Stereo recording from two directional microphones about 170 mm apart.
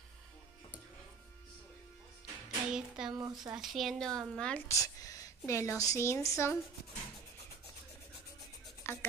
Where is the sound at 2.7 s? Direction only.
5° right (ahead or behind).